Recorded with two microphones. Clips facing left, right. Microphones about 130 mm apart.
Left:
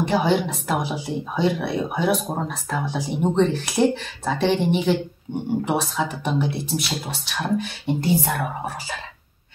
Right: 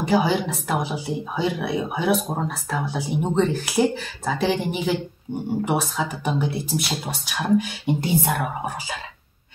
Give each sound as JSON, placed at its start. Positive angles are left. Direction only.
{"t": 0.0, "sound": "speech", "side_deg": -5}
{"t": 7.2, "sound": "speech", "side_deg": -10}